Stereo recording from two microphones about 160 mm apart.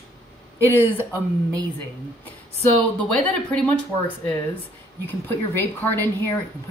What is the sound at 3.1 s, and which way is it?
Speech, 10° left (ahead or behind).